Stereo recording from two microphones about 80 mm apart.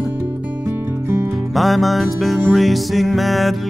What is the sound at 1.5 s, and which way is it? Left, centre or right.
Music, centre.